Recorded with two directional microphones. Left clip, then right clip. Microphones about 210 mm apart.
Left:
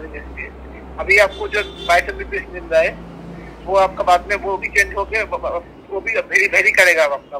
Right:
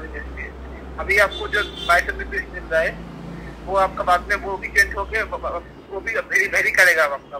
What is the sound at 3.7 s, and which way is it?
Speech, 25° left (ahead or behind).